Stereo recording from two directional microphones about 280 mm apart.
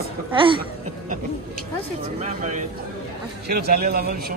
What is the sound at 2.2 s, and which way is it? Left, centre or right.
A man's voice, right.